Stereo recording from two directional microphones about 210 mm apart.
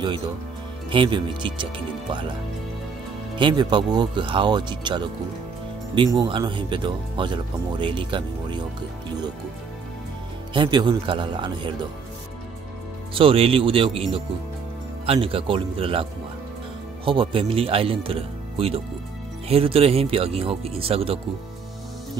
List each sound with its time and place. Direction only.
0.8 s speech: 25° right (ahead or behind)
3.3 s speech: 20° right (ahead or behind)
10.5 s speech: 20° right (ahead or behind)
13.1 s speech: 25° right (ahead or behind)
15.0 s speech: 25° right (ahead or behind)